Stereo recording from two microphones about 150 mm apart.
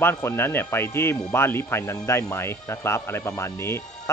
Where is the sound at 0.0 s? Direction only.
15° left (ahead or behind).